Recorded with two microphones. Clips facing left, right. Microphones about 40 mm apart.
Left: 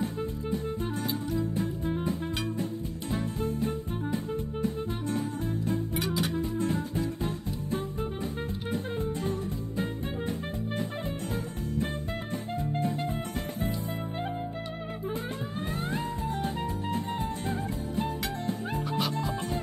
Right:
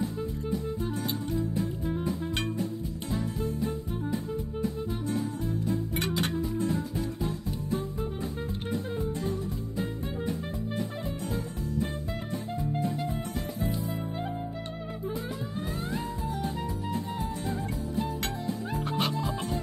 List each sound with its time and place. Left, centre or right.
0.2 s music: left
3.1 s music: left
5.9 s music: right
6.3 s music: left
8.9 s music: left
12.5 s music: left
15.9 s music: left
18.9 s music: right